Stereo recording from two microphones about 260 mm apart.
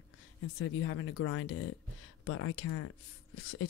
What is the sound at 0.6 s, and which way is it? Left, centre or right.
Speech, left.